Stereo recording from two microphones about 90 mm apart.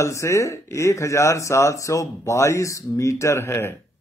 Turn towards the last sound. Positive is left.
turn(degrees=30)  # may be behind; listen again after turning